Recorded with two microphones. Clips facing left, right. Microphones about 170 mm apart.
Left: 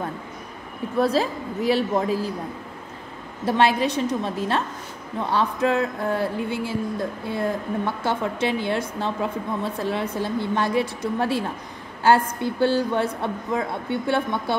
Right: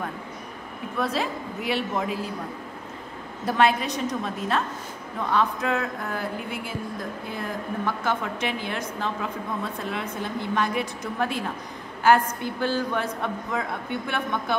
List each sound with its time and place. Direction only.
0.9 s a woman's voice: 35° left (ahead or behind)
3.4 s a woman's voice: 30° left (ahead or behind)